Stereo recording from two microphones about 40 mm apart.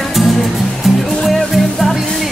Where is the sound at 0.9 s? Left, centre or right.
Centre.